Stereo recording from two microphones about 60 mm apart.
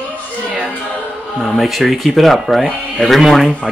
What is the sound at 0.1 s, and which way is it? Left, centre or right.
Music, right.